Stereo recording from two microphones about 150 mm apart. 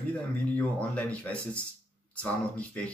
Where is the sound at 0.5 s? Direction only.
10° left (ahead or behind).